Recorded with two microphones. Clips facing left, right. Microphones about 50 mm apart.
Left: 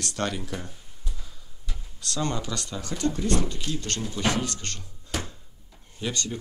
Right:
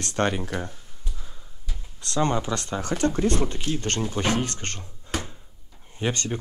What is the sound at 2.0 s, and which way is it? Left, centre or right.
Speech, right.